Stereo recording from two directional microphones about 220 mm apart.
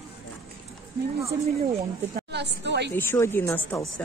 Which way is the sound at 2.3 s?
50° right (ahead or behind).